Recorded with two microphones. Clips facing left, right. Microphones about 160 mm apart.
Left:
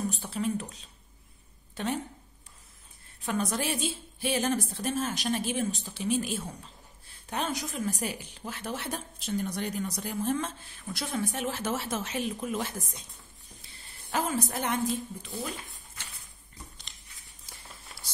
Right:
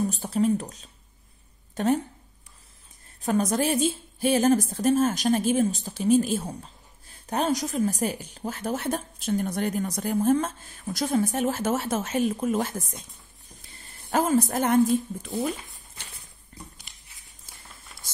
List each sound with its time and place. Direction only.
0.1 s speech: 40° right (ahead or behind)
3.2 s a woman's voice: 40° right (ahead or behind)